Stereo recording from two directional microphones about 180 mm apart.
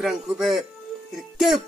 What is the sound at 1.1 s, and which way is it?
Music, centre (ahead or behind).